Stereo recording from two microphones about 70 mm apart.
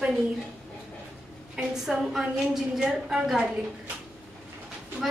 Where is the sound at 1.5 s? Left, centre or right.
Centre.